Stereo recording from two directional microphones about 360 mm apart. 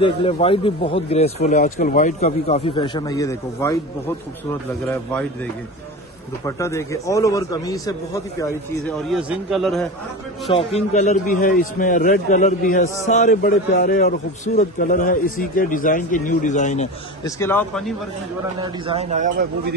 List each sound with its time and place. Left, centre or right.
0.0 s speech: centre
4.8 s a man's voice: centre
10.5 s a man's voice: centre
17.4 s a man's voice: centre
18.6 s a man's voice: centre